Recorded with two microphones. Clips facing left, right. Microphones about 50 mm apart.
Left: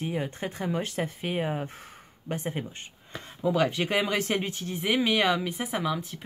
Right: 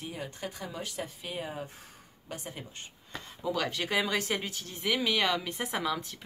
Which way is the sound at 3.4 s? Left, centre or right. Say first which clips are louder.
Left 6 dB; left.